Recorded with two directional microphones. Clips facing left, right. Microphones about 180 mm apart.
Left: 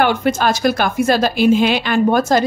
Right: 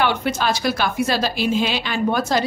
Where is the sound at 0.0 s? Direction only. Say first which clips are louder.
Left 5 dB; 45° left (ahead or behind).